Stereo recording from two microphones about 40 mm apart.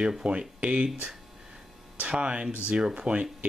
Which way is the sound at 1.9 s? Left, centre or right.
Right.